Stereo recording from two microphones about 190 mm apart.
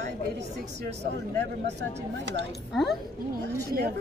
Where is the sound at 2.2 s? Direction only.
70° right (ahead or behind).